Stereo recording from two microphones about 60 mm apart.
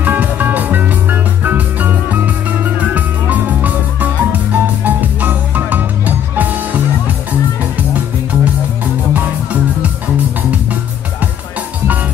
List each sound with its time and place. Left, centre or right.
0.0 s music: right